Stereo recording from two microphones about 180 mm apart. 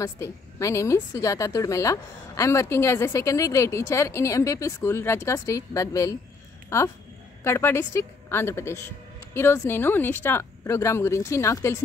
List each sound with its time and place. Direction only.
0.0 s a woman's voice: 15° left (ahead or behind)